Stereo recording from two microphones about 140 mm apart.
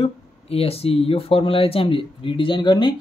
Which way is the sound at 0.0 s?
45° left (ahead or behind).